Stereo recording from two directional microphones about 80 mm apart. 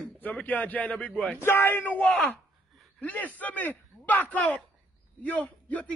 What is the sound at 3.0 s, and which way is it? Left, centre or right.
A man's voice, left.